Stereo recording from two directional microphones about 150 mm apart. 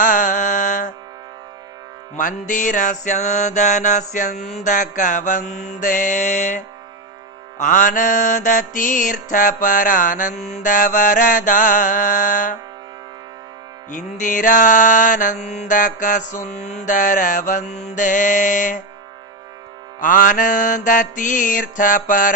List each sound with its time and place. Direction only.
0.0 s mantra: 60° left (ahead or behind)
2.1 s mantra: 60° left (ahead or behind)
13.8 s mantra: 55° left (ahead or behind)
20.0 s mantra: 60° left (ahead or behind)